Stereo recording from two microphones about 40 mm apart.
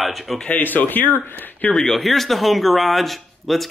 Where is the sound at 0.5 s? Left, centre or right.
Left.